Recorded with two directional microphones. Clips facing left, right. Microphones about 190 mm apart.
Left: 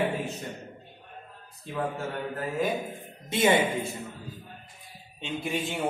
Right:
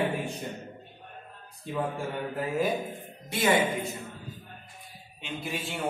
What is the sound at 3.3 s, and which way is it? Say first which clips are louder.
Speech: left 2 dB; 25° left (ahead or behind).